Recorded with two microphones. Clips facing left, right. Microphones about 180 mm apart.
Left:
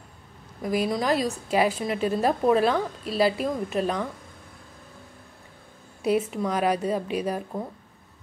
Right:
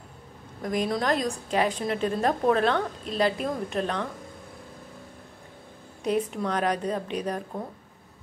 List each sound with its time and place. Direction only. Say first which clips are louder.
0.6 s a woman's voice: left 2 dB; 5° left (ahead or behind)
6.0 s a woman's voice: left 2 dB; 5° left (ahead or behind)